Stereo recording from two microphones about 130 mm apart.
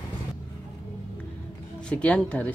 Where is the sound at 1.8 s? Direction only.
10° left (ahead or behind).